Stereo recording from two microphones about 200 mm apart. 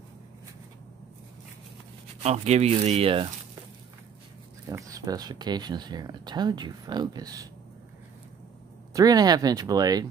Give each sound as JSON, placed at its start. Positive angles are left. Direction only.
{"t": 2.2, "sound": "speech", "side_deg": -35}
{"t": 4.6, "sound": "speech", "side_deg": -15}
{"t": 8.9, "sound": "speech", "side_deg": -20}